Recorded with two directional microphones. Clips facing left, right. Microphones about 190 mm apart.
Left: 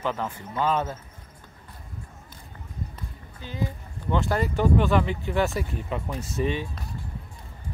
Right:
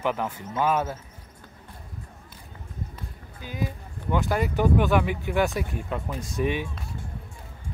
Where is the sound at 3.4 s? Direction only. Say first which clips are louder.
Even; 10° right (ahead or behind); by 6.4 s 5° left (ahead or behind).